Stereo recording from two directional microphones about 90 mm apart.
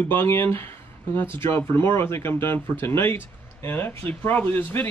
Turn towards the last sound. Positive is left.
turn(degrees=25)  # may be behind; listen again after turning